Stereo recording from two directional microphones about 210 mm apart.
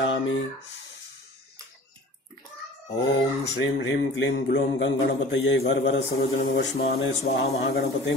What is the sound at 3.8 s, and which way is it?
A man's voice, 55° left (ahead or behind).